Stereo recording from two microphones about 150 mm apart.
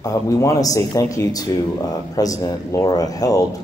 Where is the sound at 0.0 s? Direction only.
20° left (ahead or behind).